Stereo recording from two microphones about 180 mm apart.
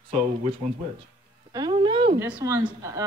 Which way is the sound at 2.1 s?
10° right (ahead or behind).